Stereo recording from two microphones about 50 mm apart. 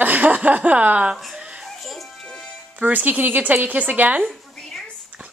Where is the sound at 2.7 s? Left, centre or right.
Right.